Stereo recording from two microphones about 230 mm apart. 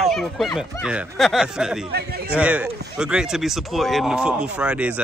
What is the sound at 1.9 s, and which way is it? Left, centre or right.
Speech, right.